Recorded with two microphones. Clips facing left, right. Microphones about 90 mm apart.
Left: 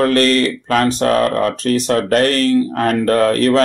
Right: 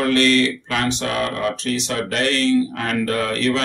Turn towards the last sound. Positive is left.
turn(degrees=45)  # may be behind; listen again after turning